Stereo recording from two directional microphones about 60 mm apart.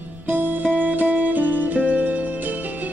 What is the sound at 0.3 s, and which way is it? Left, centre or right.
Music, right.